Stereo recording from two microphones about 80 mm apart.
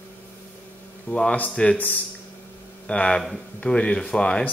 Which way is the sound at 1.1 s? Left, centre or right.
Centre.